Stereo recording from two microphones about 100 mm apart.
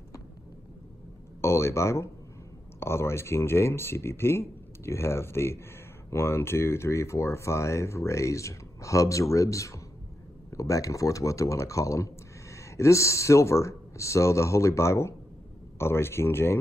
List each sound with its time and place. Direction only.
1.4 s speech: 30° left (ahead or behind)